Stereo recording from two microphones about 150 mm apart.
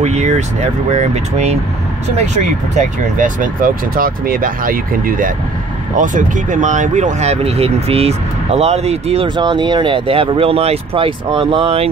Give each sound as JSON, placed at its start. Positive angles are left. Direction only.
{"t": 0.0, "sound": "speech", "side_deg": -50}